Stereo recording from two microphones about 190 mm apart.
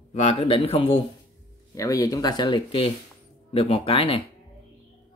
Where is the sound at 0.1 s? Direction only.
35° left (ahead or behind).